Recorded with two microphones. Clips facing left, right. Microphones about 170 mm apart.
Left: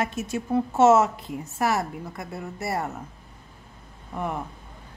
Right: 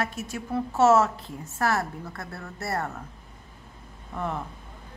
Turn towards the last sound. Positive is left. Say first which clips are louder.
# left 1 dB
turn(degrees=15)  # may be behind; listen again after turning